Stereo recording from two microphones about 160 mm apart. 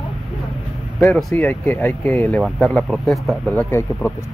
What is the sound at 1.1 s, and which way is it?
Speech, centre (ahead or behind).